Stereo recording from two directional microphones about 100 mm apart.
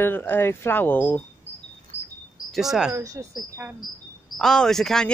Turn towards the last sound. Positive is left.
turn(degrees=5)  # may be behind; listen again after turning